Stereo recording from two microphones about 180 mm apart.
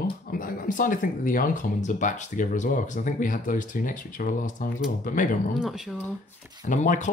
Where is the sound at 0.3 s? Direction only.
50° left (ahead or behind).